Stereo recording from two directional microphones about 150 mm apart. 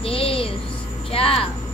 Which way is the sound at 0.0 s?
40° left (ahead or behind).